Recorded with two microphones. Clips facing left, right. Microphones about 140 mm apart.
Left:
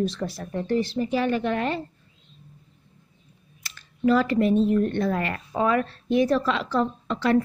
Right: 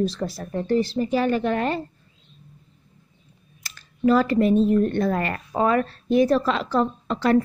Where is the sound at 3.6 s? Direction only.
40° right (ahead or behind).